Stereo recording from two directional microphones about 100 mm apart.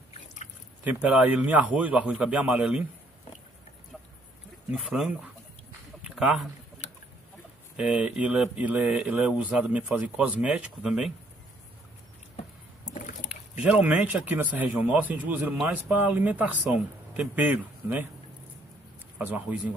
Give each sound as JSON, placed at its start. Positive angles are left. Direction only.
{"t": 0.8, "sound": "speech", "side_deg": -15}
{"t": 4.6, "sound": "speech", "side_deg": -5}
{"t": 6.0, "sound": "a sound", "side_deg": -5}
{"t": 7.7, "sound": "speech", "side_deg": -10}
{"t": 13.7, "sound": "speech", "side_deg": -15}
{"t": 19.1, "sound": "speech", "side_deg": -15}